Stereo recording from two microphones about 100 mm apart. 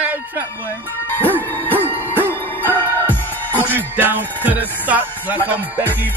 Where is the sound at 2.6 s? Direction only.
20° left (ahead or behind).